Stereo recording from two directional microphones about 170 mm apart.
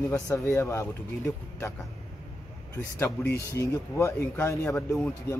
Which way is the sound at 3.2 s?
15° left (ahead or behind).